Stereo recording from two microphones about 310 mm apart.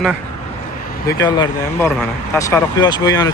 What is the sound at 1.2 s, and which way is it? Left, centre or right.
Speech, centre.